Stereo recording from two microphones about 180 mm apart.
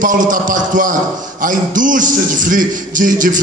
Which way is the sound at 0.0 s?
45° right (ahead or behind).